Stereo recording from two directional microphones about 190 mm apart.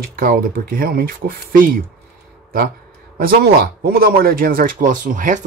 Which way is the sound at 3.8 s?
50° right (ahead or behind).